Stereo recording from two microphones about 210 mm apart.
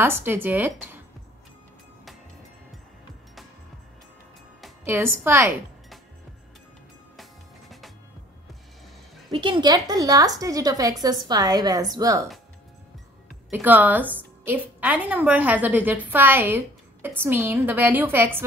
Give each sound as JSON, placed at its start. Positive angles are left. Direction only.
{"t": 0.0, "sound": "a woman's voice", "side_deg": -10}
{"t": 4.8, "sound": "a woman's voice", "side_deg": -10}
{"t": 7.2, "sound": "music", "side_deg": 0}
{"t": 9.3, "sound": "a woman's voice", "side_deg": -20}
{"t": 13.5, "sound": "a woman's voice", "side_deg": -10}